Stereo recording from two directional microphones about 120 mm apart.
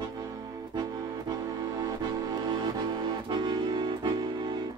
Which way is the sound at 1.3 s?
35° right (ahead or behind).